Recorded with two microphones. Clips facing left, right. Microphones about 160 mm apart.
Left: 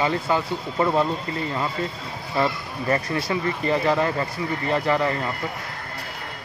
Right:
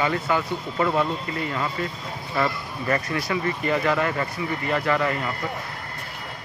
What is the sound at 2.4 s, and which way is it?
Speech, 30° left (ahead or behind).